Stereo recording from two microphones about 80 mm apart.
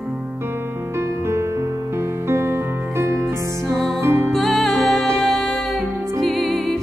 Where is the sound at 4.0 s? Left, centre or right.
Right.